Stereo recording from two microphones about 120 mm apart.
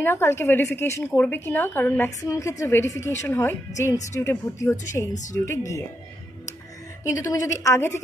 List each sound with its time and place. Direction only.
0.0 s a woman's voice: 20° left (ahead or behind)
7.1 s a woman's voice: 25° left (ahead or behind)